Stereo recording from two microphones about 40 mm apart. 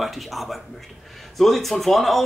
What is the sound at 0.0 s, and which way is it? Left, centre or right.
Speech, centre.